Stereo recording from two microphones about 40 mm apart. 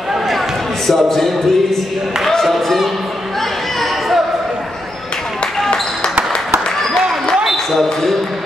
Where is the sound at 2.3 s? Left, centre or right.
Centre.